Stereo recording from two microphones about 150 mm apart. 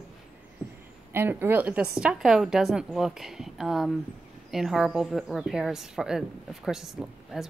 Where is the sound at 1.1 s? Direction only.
15° right (ahead or behind).